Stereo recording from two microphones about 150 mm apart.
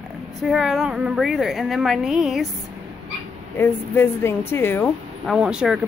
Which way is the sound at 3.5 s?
15° left (ahead or behind).